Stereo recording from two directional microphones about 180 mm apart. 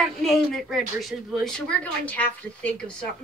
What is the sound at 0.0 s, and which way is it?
A woman's voice, centre (ahead or behind).